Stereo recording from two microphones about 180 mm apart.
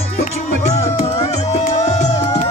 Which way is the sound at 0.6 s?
35° left (ahead or behind).